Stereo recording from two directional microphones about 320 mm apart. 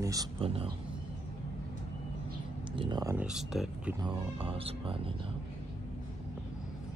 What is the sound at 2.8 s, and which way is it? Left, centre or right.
Speech, centre.